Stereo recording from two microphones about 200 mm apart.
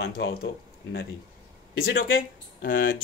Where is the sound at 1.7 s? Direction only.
50° left (ahead or behind).